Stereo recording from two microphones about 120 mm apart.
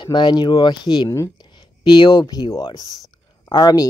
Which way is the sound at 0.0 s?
40° left (ahead or behind).